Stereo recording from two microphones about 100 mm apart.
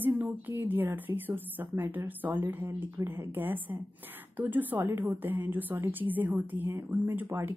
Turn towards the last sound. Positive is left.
turn(degrees=-20)  # may be behind; listen again after turning